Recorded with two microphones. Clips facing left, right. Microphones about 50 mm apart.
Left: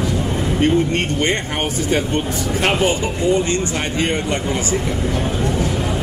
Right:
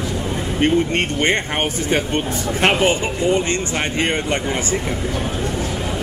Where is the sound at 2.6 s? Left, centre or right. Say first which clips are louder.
Right 2 dB; right.